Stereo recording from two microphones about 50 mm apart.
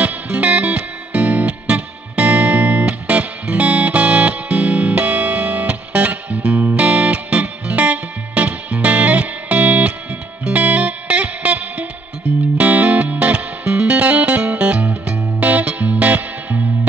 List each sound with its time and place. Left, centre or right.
0.0 s music: right